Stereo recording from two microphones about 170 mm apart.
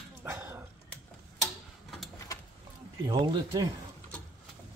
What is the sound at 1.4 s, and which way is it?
Tick-tock, centre (ahead or behind).